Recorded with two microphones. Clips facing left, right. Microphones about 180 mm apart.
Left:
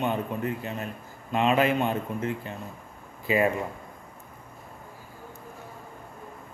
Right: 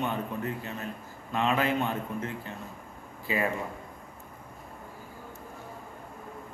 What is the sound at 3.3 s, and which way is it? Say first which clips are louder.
Speech: left 6 dB; 15° left (ahead or behind).